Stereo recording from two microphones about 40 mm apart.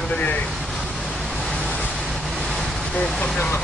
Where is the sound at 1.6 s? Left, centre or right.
Left.